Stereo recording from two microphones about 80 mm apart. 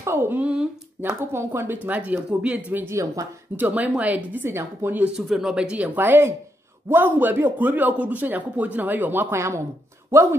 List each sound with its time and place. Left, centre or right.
0.0 s speech: right
0.4 s speech: centre
1.0 s a man's voice: right
2.8 s speech: right
3.5 s a man's voice: right
5.0 s speech: centre
5.9 s a man's voice: right